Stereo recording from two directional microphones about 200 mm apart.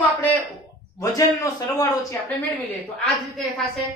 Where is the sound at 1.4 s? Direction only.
15° left (ahead or behind).